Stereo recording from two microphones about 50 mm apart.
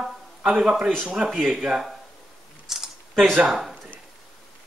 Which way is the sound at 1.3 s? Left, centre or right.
Centre.